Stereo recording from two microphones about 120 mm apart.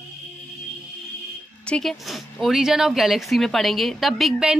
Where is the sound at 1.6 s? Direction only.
5° left (ahead or behind).